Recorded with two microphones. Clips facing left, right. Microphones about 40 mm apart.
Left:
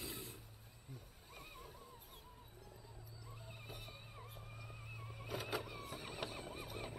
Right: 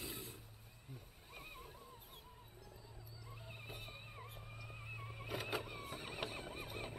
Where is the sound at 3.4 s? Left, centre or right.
Right.